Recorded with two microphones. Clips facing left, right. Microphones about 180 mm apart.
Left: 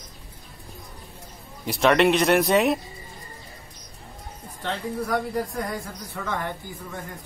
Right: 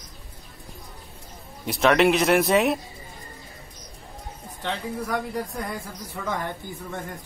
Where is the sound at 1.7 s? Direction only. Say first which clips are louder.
Even; centre (ahead or behind).